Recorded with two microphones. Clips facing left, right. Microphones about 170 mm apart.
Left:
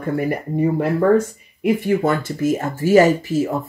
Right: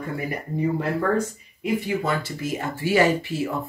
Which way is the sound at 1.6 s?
50° left (ahead or behind).